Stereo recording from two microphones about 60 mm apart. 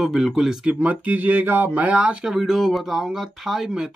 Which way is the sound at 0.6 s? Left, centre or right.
Centre.